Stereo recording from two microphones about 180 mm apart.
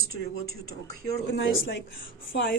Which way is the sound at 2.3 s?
85° left.